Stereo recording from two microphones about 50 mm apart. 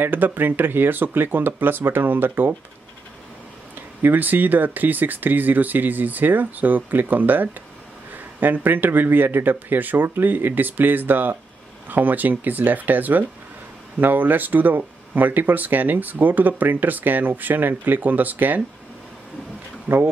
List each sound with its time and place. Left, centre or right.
0.0 s speech: right
4.0 s speech: right
19.9 s speech: right